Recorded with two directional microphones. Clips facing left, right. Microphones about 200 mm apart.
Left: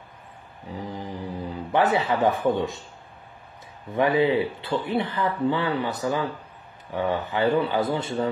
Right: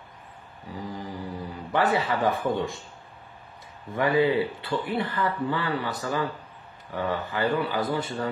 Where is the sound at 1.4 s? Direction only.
20° left (ahead or behind).